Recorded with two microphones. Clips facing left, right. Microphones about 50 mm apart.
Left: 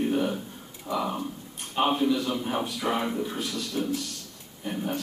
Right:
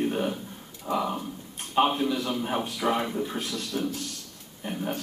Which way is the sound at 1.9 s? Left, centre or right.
Centre.